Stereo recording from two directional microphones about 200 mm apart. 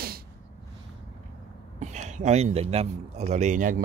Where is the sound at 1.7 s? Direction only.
35° right (ahead or behind).